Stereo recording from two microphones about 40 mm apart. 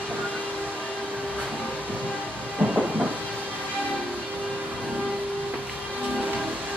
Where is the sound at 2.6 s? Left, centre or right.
Right.